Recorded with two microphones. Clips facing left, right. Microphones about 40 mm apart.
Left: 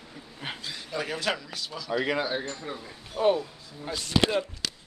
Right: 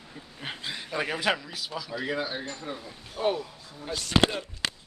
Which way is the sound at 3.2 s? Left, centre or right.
Left.